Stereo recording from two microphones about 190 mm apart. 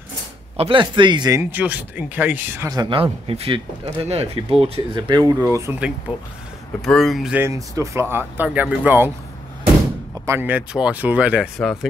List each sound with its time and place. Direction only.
0.6 s speech: 25° right (ahead or behind)
1.5 s speech: 10° right (ahead or behind)
6.8 s speech: centre (ahead or behind)
10.2 s speech: 10° right (ahead or behind)